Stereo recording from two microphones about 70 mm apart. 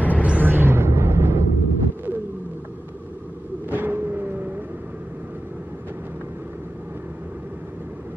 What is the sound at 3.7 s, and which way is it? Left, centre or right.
Vehicle, right.